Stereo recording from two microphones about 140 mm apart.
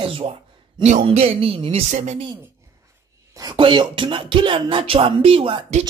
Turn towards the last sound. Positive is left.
turn(degrees=-45)  # may be behind; listen again after turning